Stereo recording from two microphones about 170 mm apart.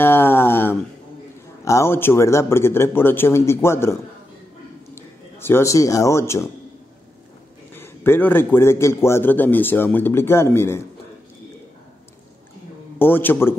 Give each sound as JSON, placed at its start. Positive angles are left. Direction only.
{"t": 0.0, "sound": "a sound", "side_deg": 15}
{"t": 1.6, "sound": "a man's voice", "side_deg": 15}
{"t": 5.4, "sound": "a man's voice", "side_deg": 15}
{"t": 7.7, "sound": "a man's voice", "side_deg": 15}
{"t": 13.0, "sound": "a man's voice", "side_deg": 10}